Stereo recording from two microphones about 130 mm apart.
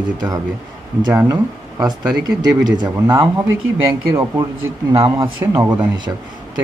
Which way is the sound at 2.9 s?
30° right (ahead or behind).